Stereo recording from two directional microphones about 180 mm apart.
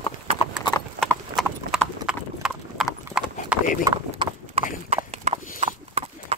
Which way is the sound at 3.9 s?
20° right (ahead or behind).